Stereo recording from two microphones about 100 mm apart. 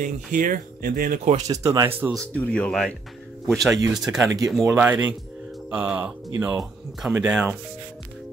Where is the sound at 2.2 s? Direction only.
10° left (ahead or behind).